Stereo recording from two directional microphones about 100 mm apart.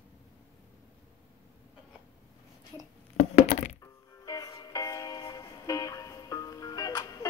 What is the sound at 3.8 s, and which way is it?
Music, 35° left (ahead or behind).